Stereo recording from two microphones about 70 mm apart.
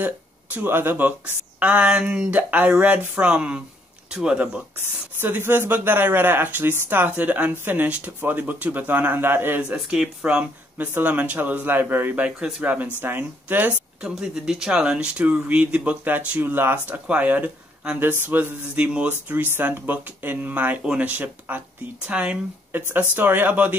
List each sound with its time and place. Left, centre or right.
0.6 s speech: right; by 4.5 s centre
5.2 s speech: right
9.6 s speech: centre
12.4 s speech: centre
14.0 s speech: centre
18.2 s a sound: right
18.8 s speech: right
22.7 s speech: right